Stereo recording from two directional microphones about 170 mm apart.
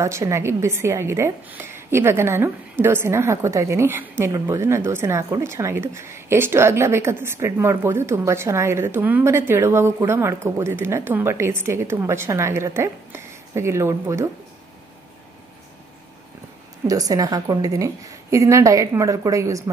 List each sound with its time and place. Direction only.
0.0 s a woman's voice: 15° right (ahead or behind)
16.8 s a woman's voice: 20° right (ahead or behind)